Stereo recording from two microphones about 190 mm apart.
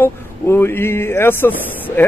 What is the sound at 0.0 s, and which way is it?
Speech, 10° left (ahead or behind).